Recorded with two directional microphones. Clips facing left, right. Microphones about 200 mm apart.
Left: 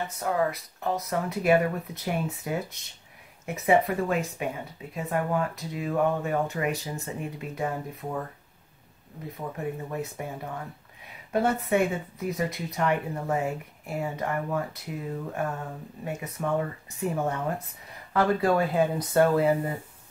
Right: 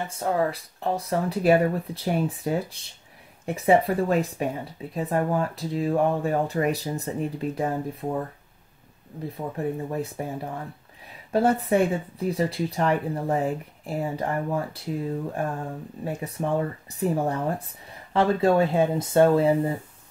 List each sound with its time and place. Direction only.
0.2 s speech: 30° right (ahead or behind)
9.4 s speech: 30° right (ahead or behind)